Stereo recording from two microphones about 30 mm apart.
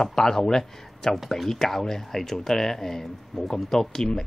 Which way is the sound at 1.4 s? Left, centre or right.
Centre.